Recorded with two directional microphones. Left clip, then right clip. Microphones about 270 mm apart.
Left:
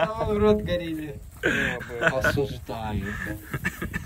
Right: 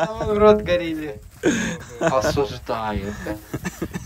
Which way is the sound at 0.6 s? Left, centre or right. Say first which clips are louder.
Right 7 dB; centre.